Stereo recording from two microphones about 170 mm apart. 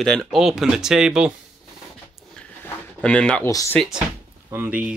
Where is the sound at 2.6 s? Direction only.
5° left (ahead or behind).